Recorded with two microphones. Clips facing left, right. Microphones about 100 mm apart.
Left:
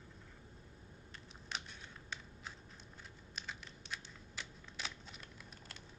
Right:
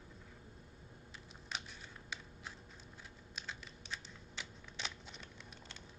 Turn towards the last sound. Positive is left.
turn(degrees=0)  # may be behind; listen again after turning